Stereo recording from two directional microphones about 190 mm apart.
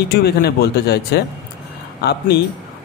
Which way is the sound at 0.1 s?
55° left (ahead or behind).